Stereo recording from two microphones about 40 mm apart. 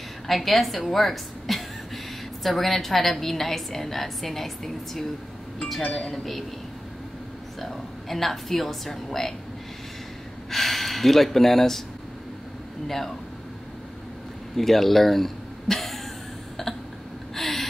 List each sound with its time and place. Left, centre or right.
0.3 s a woman's voice: centre
5.9 s a woman's voice: centre
6.1 s a woman's voice: centre
7.6 s a woman's voice: centre
10.5 s a woman's voice: centre
12.8 s a woman's voice: centre
14.6 s speech: centre
17.4 s snort: centre